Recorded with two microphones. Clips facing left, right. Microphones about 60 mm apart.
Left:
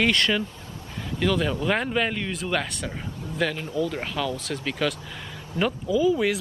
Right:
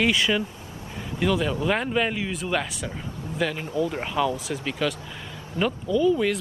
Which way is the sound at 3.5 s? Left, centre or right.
Right.